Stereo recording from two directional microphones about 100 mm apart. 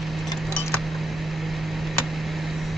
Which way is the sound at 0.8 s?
Centre (ahead or behind).